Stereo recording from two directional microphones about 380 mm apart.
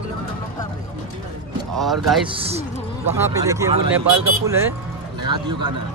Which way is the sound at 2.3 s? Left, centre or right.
Centre.